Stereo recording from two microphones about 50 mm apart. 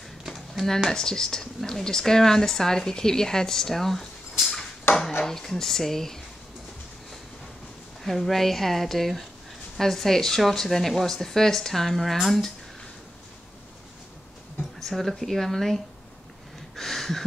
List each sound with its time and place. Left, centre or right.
0.3 s a sound: centre
0.8 s speech: centre
4.9 s dishes: left
5.2 s speech: centre
8.0 s speech: centre
14.9 s speech: centre
16.7 s a sound: centre